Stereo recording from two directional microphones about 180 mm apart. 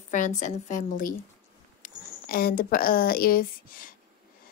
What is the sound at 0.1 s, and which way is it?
A woman's voice, 45° left (ahead or behind).